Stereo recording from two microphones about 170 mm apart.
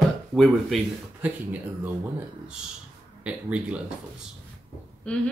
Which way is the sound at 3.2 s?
5° right (ahead or behind).